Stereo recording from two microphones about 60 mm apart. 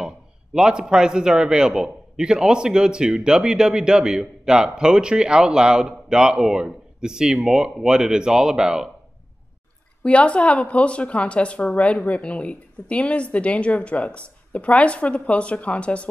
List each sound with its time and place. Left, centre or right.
0.6 s a man's voice: centre
10.0 s a woman's voice: left